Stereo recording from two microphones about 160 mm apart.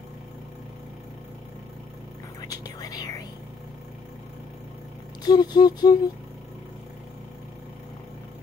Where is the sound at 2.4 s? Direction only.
25° left (ahead or behind).